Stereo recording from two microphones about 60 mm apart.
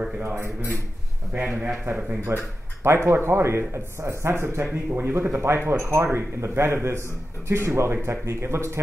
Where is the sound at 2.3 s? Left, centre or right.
Right.